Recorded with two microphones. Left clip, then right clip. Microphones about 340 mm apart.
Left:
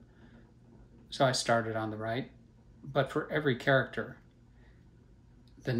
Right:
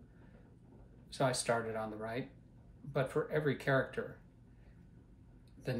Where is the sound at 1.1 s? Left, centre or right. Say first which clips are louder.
Left 6 dB; left.